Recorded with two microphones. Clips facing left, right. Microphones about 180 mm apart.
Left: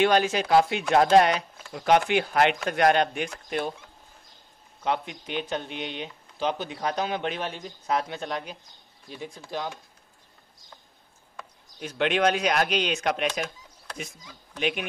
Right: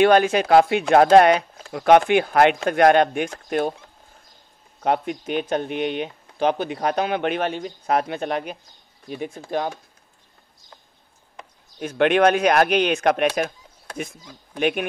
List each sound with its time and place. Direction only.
0.0 s speech: 55° right (ahead or behind)
4.8 s speech: 50° right (ahead or behind)
11.8 s speech: 50° right (ahead or behind)
14.6 s speech: 50° right (ahead or behind)